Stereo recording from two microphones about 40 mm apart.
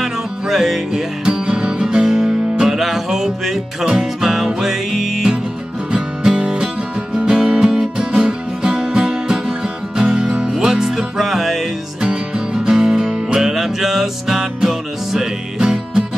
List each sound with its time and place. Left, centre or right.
0.0 s music: centre